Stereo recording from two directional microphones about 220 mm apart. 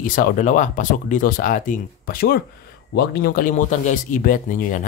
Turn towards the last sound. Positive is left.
turn(degrees=35)  # may be behind; listen again after turning